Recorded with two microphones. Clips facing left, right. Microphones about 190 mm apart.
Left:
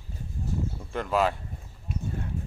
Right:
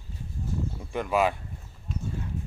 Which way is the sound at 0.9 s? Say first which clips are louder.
Right 1 dB; 10° right (ahead or behind).